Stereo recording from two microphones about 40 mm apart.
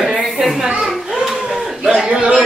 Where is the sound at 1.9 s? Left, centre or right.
Right.